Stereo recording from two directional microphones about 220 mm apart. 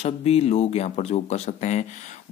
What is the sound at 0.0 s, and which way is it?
Speech, 30° left (ahead or behind).